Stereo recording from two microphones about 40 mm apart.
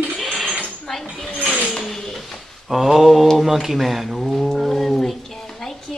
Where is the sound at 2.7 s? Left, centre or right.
Centre.